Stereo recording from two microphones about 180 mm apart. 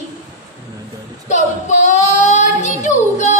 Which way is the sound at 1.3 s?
40° left (ahead or behind).